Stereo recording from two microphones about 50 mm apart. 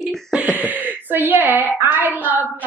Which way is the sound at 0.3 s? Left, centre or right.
Right.